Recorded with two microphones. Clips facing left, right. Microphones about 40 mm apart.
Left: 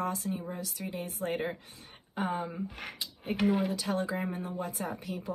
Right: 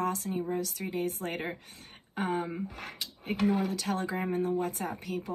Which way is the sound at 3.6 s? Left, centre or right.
Right.